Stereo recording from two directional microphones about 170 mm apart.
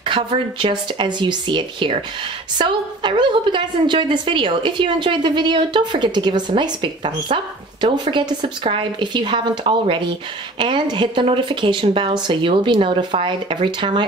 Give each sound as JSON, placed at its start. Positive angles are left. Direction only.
{"t": 0.0, "sound": "a woman's voice", "side_deg": -30}